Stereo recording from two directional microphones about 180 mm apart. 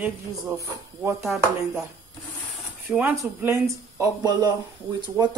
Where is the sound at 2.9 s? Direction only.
5° right (ahead or behind).